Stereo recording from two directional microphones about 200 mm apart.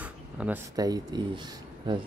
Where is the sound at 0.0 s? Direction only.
5° right (ahead or behind).